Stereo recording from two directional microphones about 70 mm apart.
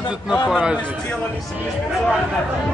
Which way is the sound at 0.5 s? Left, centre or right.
Centre.